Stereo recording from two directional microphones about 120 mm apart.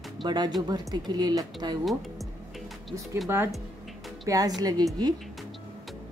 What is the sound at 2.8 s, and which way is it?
Speech, centre (ahead or behind).